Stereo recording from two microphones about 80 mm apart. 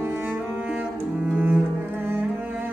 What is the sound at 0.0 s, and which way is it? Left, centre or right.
Cello, right.